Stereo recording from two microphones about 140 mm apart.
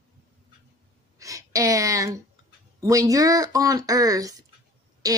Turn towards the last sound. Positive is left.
turn(degrees=-25)  # may be behind; listen again after turning